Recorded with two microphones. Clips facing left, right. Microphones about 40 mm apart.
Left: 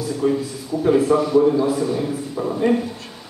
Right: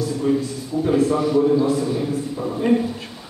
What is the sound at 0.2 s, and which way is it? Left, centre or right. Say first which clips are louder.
A man's voice: left 2 dB; centre.